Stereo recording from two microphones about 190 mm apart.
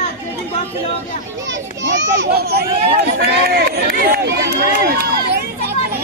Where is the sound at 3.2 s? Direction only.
60° right (ahead or behind).